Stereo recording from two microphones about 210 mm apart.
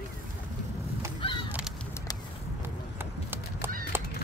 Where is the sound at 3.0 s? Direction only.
10° right (ahead or behind).